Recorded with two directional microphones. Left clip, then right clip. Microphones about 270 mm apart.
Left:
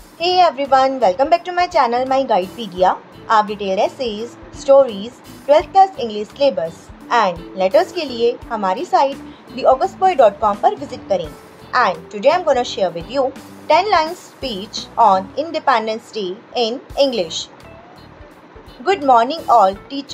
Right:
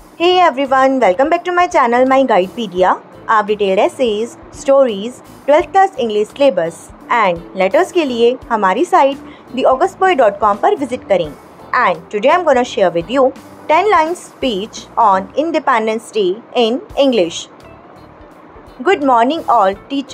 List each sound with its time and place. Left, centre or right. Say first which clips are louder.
0.2 s a woman's voice: right 3 dB; right
18.9 s a woman's voice: right 2 dB; centre